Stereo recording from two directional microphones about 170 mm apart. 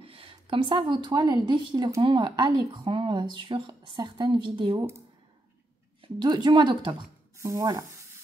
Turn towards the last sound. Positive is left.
turn(degrees=-20)  # may be behind; listen again after turning